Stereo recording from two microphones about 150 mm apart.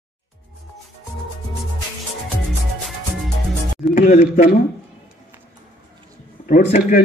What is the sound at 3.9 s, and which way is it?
Speech, 55° left (ahead or behind).